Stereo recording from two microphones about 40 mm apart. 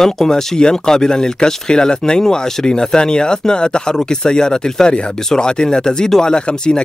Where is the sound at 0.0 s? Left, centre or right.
Centre.